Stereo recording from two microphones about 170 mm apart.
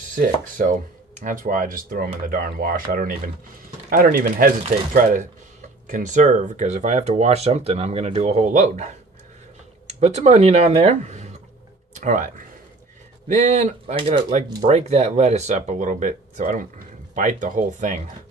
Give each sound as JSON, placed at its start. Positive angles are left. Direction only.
{"t": 0.1, "sound": "speech", "side_deg": -50}
{"t": 13.9, "sound": "speech", "side_deg": -30}